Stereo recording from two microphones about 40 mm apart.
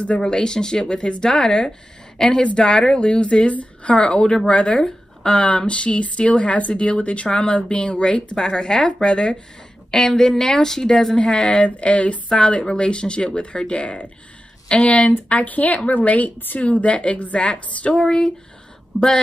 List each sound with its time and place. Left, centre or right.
0.2 s a woman's voice: centre
11.1 s a woman's voice: left